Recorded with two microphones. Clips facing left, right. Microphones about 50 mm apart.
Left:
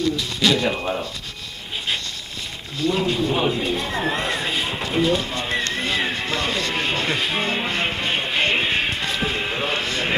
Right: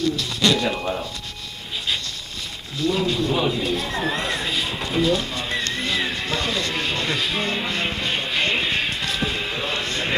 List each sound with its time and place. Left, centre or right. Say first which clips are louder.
0.4 s speech: even; centre
2.9 s speech: left 1 dB; centre
4.5 s a sound: left 1 dB; left
4.8 s speech: even; centre
5.7 s music: left 1 dB; centre
9.2 s a sound: left 2 dB; centre